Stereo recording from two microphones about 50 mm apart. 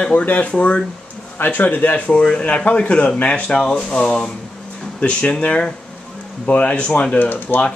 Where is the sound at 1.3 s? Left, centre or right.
Left.